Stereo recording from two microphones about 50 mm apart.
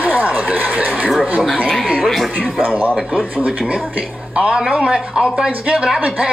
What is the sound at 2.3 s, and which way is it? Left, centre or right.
Speech, centre.